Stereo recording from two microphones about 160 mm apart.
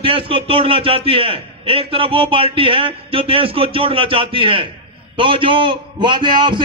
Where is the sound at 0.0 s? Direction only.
35° right (ahead or behind).